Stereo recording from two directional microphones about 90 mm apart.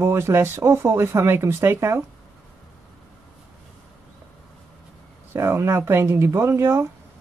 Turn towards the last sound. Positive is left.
turn(degrees=-25)  # may be behind; listen again after turning